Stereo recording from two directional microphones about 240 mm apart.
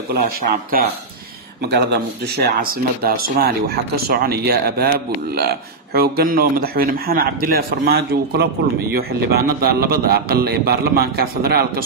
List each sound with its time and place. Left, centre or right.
0.1 s speech: right
5.9 s speech: right